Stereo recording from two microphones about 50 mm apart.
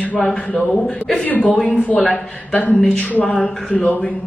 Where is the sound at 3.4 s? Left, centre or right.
Centre.